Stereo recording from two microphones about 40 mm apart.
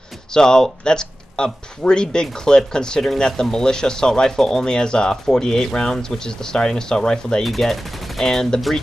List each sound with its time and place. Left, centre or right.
0.3 s speech: centre
7.4 s speech: centre